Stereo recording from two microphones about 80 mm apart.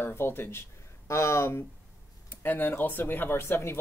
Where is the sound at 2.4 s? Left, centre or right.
Left.